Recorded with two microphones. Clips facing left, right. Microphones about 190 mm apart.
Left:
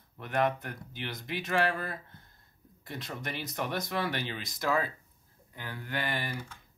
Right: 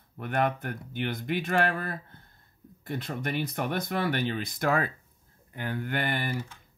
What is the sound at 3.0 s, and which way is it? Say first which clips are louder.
Speech: right 6 dB; 55° right (ahead or behind).